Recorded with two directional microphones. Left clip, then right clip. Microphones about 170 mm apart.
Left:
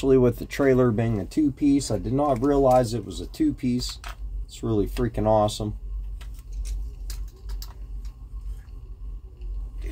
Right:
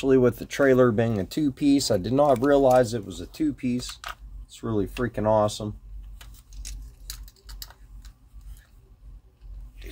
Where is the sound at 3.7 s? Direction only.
50° right (ahead or behind).